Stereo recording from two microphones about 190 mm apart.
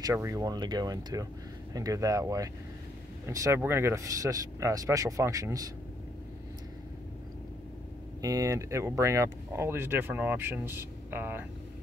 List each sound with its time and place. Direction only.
0.0 s speech: 15° right (ahead or behind)
8.2 s speech: 20° right (ahead or behind)